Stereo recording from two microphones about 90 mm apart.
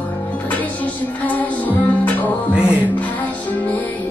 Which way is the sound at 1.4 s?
20° left (ahead or behind).